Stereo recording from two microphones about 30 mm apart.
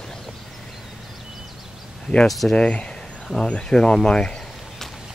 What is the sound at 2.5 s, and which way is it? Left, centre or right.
Speech, left.